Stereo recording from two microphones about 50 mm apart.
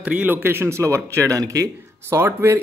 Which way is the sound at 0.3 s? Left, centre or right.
Right.